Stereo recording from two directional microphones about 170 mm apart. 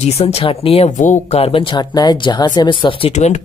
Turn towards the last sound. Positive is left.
turn(degrees=40)  # may be behind; listen again after turning